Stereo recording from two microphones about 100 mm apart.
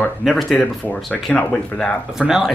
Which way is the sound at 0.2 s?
Centre (ahead or behind).